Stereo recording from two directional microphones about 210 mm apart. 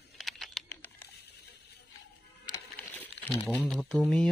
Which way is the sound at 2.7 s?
5° left (ahead or behind).